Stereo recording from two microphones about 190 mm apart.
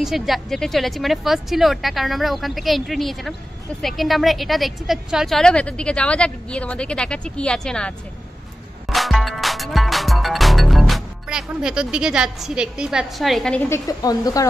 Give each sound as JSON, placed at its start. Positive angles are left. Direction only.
{"t": 0.0, "sound": "a woman's voice", "side_deg": 0}
{"t": 8.8, "sound": "music", "side_deg": 0}
{"t": 13.7, "sound": "speech", "side_deg": 20}